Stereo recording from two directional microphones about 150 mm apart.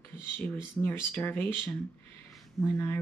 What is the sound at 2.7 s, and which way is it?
Speech, 15° left (ahead or behind).